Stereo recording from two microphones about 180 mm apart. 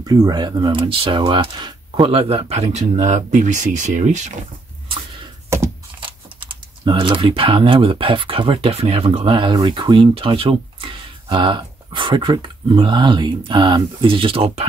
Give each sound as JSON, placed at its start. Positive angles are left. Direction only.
{"t": 0.0, "sound": "speech", "side_deg": -20}
{"t": 5.9, "sound": "speech", "side_deg": -30}